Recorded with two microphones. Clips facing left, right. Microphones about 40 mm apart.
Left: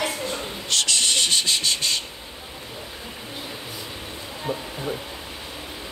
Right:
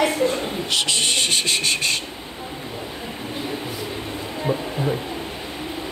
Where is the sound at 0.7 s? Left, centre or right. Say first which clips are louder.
Even; centre; by 2.0 s right.